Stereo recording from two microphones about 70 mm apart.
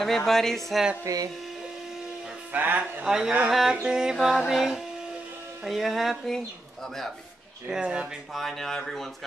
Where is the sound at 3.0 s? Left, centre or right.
Centre.